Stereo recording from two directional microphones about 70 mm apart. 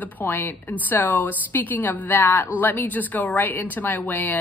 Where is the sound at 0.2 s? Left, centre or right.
Left.